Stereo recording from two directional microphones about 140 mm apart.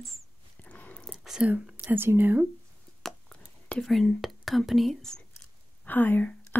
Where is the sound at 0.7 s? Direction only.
10° left (ahead or behind).